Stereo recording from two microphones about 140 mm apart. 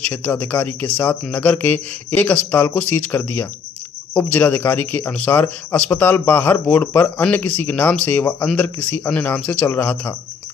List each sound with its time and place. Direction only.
0.1 s a man's voice: 20° left (ahead or behind)